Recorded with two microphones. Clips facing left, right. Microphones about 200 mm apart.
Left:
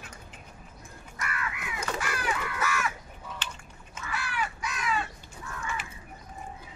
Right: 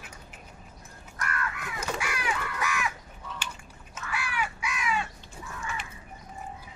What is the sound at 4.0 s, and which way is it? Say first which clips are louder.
Crow: right 1 dB; 10° right (ahead or behind).